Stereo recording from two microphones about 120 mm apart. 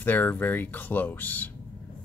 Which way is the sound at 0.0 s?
15° left (ahead or behind).